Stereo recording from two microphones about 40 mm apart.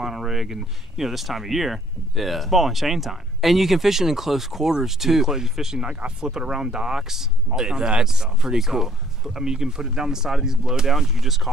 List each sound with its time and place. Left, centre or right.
0.0 s speech: centre
5.9 s speech: right
10.9 s speech: centre